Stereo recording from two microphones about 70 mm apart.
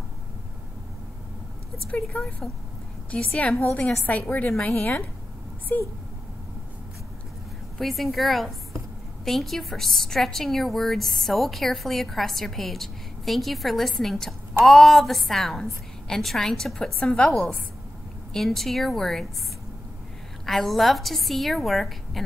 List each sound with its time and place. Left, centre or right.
1.9 s a woman's voice: centre
5.7 s a woman's voice: left
7.8 s a woman's voice: centre
20.4 s a woman's voice: centre